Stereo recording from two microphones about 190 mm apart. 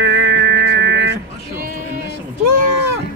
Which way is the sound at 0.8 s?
60° right (ahead or behind).